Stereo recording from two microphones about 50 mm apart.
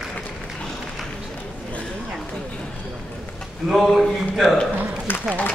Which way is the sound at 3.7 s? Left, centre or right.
Centre.